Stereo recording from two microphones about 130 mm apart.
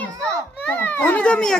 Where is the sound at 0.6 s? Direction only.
10° left (ahead or behind).